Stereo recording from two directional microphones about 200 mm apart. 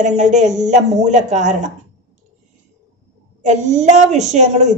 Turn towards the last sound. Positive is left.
turn(degrees=-35)  # may be behind; listen again after turning